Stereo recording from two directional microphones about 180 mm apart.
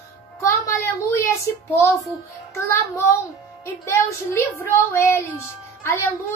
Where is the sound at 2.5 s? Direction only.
15° left (ahead or behind).